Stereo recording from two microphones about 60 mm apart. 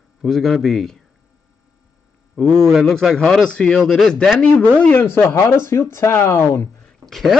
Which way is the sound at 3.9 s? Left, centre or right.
Centre.